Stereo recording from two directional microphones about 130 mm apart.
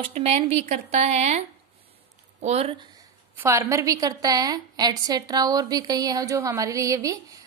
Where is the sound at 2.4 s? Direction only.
55° right (ahead or behind).